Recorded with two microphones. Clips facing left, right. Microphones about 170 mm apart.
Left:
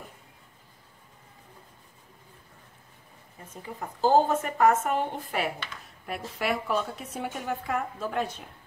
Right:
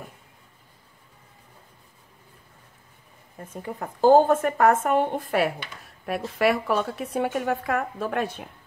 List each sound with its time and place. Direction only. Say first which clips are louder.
3.3 s a woman's voice: right 5 dB; 55° right (ahead or behind)